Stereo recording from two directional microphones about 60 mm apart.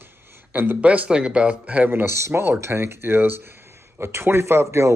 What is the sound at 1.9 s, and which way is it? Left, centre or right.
Speech, right.